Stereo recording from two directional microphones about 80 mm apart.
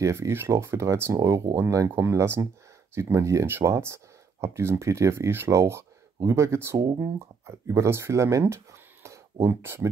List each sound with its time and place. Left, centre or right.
0.0 s speech: right
1.9 s speech: right
9.0 s a sound: right